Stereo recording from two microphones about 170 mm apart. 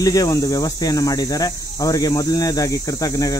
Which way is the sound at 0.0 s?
20° left (ahead or behind).